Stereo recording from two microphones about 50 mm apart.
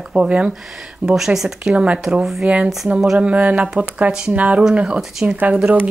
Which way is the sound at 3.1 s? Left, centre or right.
Right.